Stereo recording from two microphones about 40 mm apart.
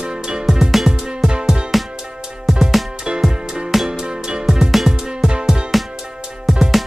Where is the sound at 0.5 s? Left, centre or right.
Centre.